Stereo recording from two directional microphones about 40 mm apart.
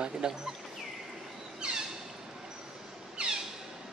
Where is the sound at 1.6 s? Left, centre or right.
Right.